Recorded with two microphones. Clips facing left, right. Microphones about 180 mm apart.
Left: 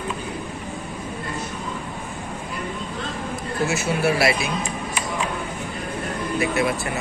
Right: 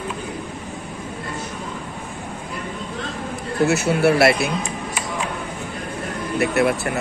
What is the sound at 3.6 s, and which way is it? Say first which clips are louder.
Speech: right 5 dB; 65° right (ahead or behind).